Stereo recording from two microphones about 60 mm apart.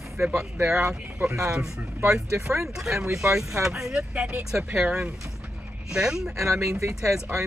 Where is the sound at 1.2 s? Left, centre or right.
Right.